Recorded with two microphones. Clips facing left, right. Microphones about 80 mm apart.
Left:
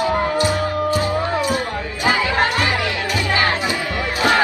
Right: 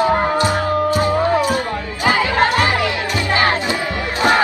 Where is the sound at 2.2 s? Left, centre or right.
Right.